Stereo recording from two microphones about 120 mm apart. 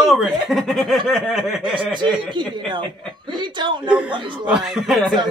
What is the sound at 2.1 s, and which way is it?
Speech, 40° right (ahead or behind).